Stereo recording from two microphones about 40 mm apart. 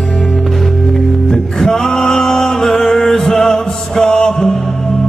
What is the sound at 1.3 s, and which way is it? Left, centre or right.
Music, centre.